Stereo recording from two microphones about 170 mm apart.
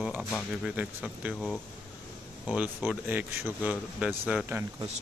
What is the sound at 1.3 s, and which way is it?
Speech, 5° left (ahead or behind).